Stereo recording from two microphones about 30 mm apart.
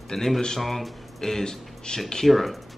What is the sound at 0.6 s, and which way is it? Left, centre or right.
Speech, centre.